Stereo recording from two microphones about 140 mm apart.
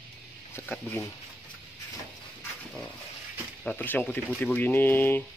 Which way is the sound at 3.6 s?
15° left (ahead or behind).